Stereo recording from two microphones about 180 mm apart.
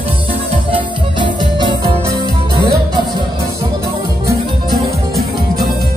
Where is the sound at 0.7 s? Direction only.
25° right (ahead or behind).